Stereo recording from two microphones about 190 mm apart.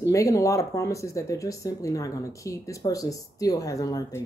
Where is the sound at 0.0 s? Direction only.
15° left (ahead or behind).